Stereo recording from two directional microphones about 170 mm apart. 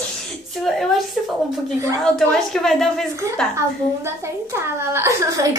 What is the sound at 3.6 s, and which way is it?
A woman's voice, 15° right (ahead or behind).